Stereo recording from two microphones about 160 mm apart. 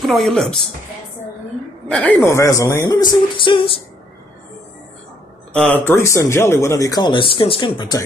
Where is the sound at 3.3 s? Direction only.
30° left (ahead or behind).